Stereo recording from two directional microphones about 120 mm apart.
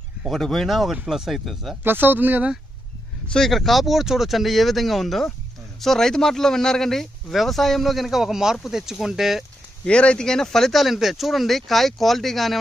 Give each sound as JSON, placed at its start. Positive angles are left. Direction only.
{"t": 0.2, "sound": "speech", "side_deg": 0}
{"t": 1.8, "sound": "speech", "side_deg": -15}
{"t": 3.3, "sound": "speech", "side_deg": 0}
{"t": 9.8, "sound": "speech", "side_deg": 10}